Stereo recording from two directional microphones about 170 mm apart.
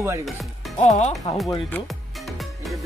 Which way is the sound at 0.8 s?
40° left (ahead or behind).